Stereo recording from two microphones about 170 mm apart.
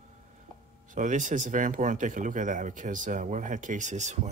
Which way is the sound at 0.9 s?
50° right (ahead or behind).